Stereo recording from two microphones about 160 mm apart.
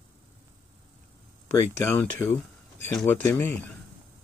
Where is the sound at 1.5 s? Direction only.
15° left (ahead or behind).